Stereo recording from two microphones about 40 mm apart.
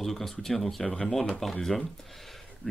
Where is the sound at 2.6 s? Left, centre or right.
Left.